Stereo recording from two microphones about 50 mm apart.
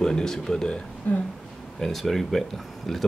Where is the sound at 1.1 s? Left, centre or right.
Left.